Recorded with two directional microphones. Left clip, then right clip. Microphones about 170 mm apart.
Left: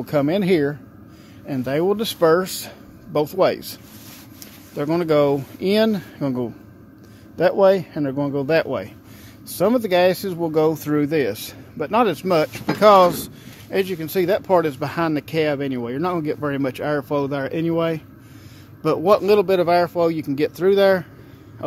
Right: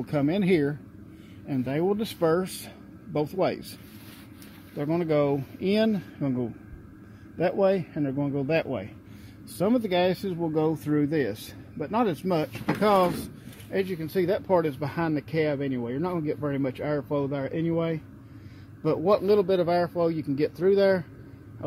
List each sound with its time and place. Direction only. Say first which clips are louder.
0.0 s speech: left 7 dB; 10° left (ahead or behind)
4.7 s speech: left 7 dB; 10° left (ahead or behind)